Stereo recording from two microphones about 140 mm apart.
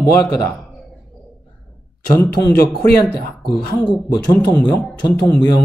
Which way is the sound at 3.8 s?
10° left (ahead or behind).